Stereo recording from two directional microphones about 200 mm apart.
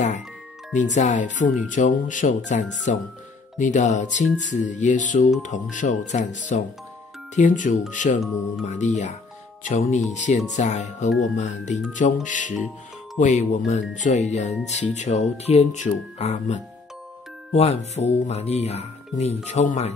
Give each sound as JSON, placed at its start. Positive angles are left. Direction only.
{"t": 0.9, "sound": "speech", "side_deg": 35}